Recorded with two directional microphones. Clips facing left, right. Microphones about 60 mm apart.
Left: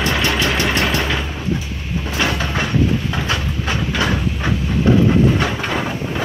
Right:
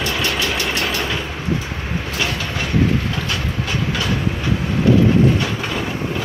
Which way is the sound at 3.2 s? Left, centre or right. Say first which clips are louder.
Left 2 dB; left.